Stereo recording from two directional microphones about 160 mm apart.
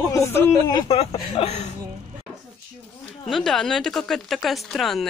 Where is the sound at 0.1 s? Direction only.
15° left (ahead or behind).